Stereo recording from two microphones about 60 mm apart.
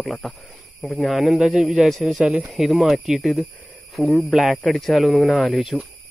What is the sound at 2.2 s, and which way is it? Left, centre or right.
Speech, centre.